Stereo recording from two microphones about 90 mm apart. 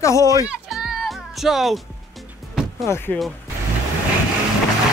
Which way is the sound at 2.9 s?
30° left (ahead or behind).